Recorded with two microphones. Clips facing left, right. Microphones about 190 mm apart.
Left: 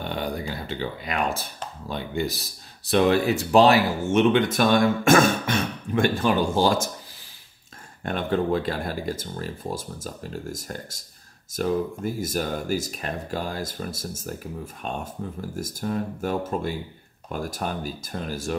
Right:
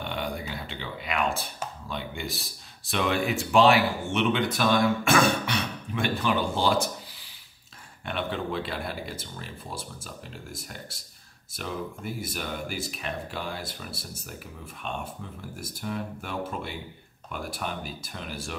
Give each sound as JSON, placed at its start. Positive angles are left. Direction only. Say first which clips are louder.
{"t": 0.0, "sound": "a sound", "louder": "left 4 dB", "side_deg": 40}
{"t": 1.9, "sound": "speech", "louder": "left 9 dB", "side_deg": 40}
{"t": 8.0, "sound": "speech", "louder": "left 6 dB", "side_deg": 45}